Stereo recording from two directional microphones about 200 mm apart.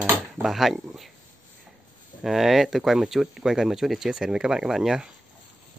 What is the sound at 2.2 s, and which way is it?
Speech, centre (ahead or behind).